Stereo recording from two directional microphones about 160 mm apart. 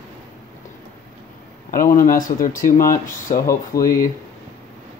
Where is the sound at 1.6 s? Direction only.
60° left (ahead or behind).